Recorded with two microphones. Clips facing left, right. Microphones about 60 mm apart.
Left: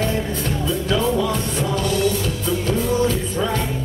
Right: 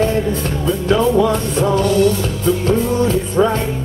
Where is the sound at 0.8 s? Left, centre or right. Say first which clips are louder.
Right 7 dB; right.